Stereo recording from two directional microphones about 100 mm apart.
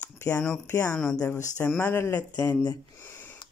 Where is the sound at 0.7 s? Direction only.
30° left (ahead or behind).